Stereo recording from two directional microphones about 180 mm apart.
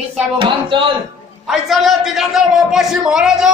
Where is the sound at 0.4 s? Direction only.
25° right (ahead or behind).